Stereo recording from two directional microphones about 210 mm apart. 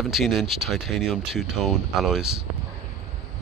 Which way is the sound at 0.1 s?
Centre (ahead or behind).